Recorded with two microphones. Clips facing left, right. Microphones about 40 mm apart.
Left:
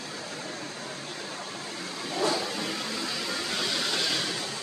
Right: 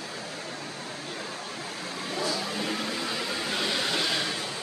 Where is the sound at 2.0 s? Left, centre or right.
Centre.